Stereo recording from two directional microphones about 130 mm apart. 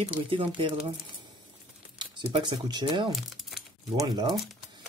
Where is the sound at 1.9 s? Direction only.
40° right (ahead or behind).